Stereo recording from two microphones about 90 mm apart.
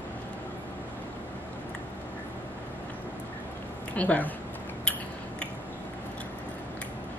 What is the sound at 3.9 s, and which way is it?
Speech, 15° left (ahead or behind).